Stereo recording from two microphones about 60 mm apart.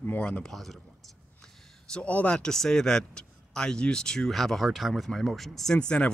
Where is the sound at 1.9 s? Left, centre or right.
Left.